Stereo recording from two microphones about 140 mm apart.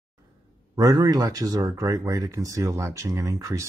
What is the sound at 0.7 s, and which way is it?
Speech, 25° right (ahead or behind).